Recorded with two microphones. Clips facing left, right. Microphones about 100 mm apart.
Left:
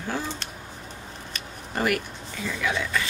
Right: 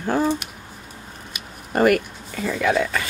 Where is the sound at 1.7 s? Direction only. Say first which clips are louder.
Right 8 dB; 50° right (ahead or behind).